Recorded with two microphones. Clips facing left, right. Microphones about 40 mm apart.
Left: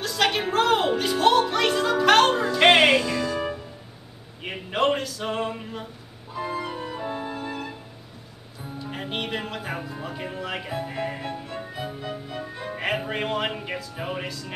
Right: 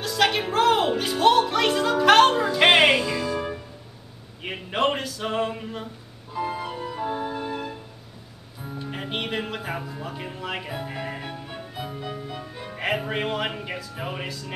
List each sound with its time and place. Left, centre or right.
0.0 s music: centre
4.4 s a sound: centre
6.5 s music: centre
6.8 s music: centre
7.1 s music: centre
8.8 s speech: centre
10.7 s music: centre
11.7 s music: centre
12.0 s music: centre